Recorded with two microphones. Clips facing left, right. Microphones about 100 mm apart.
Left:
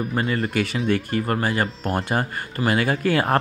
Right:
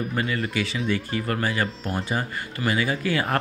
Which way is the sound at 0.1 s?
35° left (ahead or behind).